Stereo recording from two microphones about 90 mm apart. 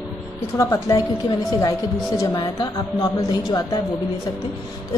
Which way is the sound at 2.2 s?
45° left (ahead or behind).